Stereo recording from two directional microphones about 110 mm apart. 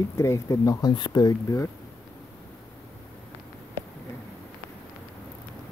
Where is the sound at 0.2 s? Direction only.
30° left (ahead or behind).